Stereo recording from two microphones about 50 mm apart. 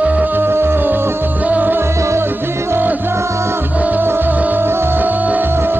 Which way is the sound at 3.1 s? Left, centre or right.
Right.